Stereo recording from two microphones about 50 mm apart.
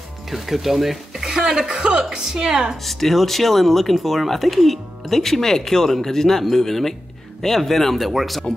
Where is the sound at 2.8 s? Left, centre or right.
Centre.